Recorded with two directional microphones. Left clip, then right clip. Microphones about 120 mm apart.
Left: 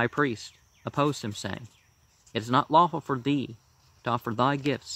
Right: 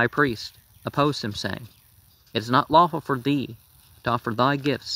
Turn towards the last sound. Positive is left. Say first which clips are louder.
# right 4 dB
turn(degrees=-20)  # may be behind; listen again after turning